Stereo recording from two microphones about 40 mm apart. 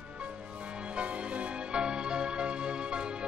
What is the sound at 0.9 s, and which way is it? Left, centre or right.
Music, right.